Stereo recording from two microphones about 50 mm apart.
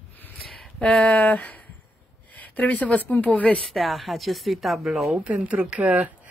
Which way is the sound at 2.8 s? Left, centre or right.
Left.